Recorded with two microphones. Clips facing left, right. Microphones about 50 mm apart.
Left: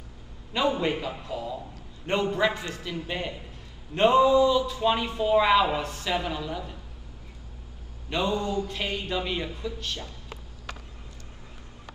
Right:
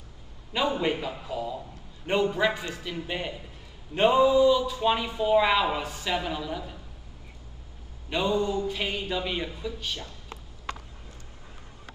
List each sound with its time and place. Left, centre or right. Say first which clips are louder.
0.5 s a woman's voice: left 1 dB; centre
8.1 s a woman's voice: even; centre
8.4 s mantra: right 2 dB; centre
8.7 s a woman's voice: even; centre